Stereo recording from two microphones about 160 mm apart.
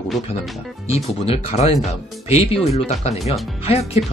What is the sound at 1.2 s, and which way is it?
Speech, 40° left (ahead or behind).